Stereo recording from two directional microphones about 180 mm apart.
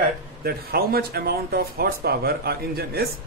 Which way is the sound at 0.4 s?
55° right (ahead or behind).